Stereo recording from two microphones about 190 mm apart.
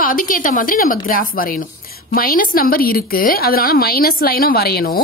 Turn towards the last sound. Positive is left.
turn(degrees=55)  # may be behind; listen again after turning